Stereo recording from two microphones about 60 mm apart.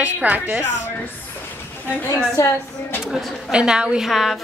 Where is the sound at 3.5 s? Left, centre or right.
Centre.